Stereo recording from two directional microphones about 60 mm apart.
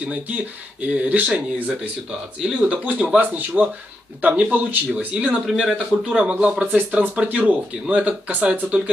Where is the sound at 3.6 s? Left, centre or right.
Right.